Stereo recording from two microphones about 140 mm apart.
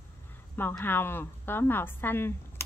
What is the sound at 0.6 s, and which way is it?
A woman's voice, 15° left (ahead or behind).